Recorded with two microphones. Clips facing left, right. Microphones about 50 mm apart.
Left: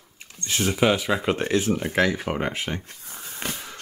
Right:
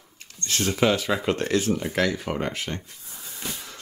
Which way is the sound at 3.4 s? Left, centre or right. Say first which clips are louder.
Left 3 dB; left.